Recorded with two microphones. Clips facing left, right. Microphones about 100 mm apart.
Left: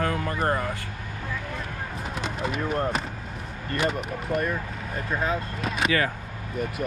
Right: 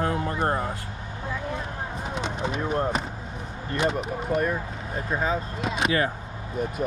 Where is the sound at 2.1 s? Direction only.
Centre (ahead or behind).